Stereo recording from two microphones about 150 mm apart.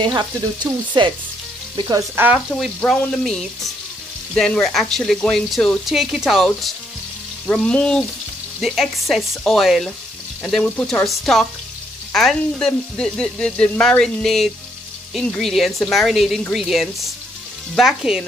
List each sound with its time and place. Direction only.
0.0 s frying: 30° right (ahead or behind)
1.8 s speech: 25° right (ahead or behind)
2.5 s sizzle: 5° left (ahead or behind)
7.4 s frying: 5° left (ahead or behind)
8.5 s sizzle: centre (ahead or behind)